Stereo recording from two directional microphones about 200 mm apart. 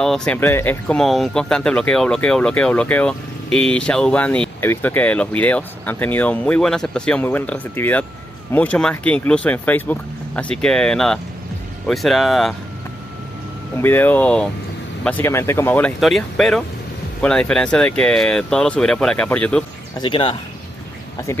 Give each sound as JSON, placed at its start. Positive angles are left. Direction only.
{"t": 0.0, "sound": "speech", "side_deg": 5}
{"t": 13.7, "sound": "speech", "side_deg": 10}
{"t": 20.0, "sound": "speech", "side_deg": 25}